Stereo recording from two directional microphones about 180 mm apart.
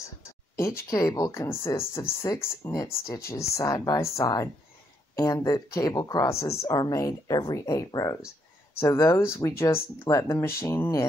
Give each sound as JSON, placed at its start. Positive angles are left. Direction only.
{"t": 0.8, "sound": "speech", "side_deg": 20}